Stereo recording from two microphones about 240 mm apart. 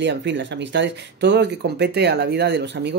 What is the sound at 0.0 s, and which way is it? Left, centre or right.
Speech, right.